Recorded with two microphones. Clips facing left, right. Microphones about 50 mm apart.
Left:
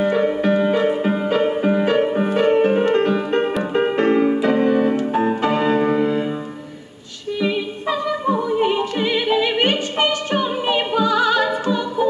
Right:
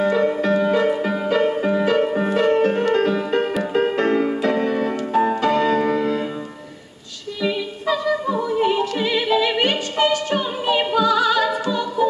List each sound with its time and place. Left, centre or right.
0.0 s music: left
7.4 s music: left
8.5 s opera: left